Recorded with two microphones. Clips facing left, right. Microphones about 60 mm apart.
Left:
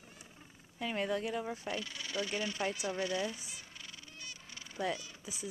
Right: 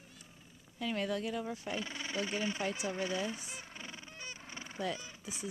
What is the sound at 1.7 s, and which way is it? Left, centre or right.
Speech, right.